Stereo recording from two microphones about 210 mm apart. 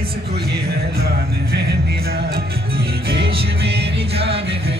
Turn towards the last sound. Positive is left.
turn(degrees=-25)  # may be behind; listen again after turning